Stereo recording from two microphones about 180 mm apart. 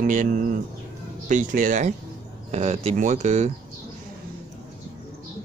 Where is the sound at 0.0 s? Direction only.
45° right (ahead or behind).